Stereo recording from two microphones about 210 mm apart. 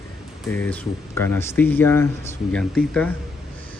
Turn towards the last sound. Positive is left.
turn(degrees=0)  # may be behind; listen again after turning